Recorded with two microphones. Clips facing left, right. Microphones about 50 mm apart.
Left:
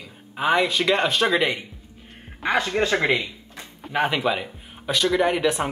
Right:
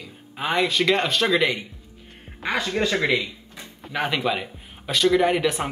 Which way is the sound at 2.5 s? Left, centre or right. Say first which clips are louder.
Left 2 dB; left.